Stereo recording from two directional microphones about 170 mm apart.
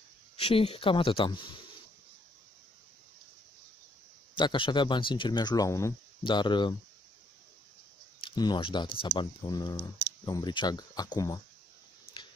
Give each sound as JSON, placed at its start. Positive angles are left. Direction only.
{"t": 0.4, "sound": "speech", "side_deg": 35}
{"t": 4.4, "sound": "speech", "side_deg": 30}
{"t": 8.2, "sound": "speech", "side_deg": 25}